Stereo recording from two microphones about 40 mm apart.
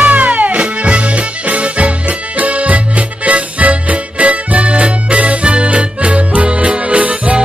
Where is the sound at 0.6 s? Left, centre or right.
Right.